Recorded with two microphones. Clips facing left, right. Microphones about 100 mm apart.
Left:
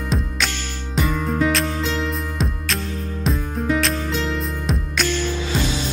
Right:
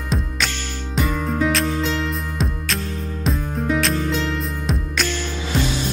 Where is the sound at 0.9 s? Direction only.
Centre (ahead or behind).